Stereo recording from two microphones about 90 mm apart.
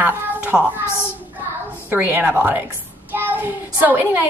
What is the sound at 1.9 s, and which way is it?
A child's voice, 20° right (ahead or behind).